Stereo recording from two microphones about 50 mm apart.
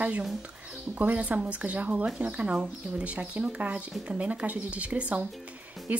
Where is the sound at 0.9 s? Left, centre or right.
Right.